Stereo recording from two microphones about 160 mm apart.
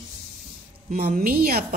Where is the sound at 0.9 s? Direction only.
65° right (ahead or behind).